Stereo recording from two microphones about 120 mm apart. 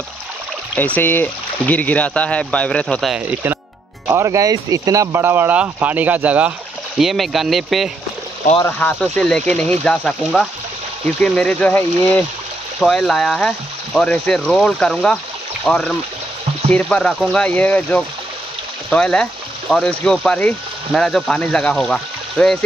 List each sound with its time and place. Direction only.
0.7 s speech: 15° left (ahead or behind)
3.2 s speech: 15° right (ahead or behind)
4.1 s speech: 25° right (ahead or behind)
7.0 s speech: centre (ahead or behind)
8.6 s speech: 15° left (ahead or behind)
12.8 s speech: centre (ahead or behind)